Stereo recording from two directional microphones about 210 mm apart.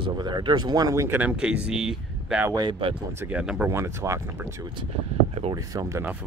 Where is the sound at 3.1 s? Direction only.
10° right (ahead or behind).